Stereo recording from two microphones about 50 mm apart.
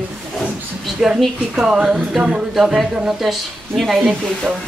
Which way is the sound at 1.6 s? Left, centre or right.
Centre.